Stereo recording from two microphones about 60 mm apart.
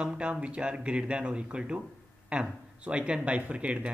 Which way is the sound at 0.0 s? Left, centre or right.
Right.